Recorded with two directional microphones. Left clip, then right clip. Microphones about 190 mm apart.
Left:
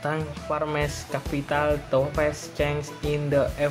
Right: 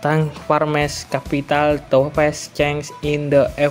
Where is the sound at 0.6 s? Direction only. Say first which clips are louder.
Right 8 dB; 35° right (ahead or behind).